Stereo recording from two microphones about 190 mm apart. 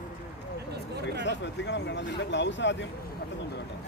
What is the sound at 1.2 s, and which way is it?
Speech, 70° left (ahead or behind).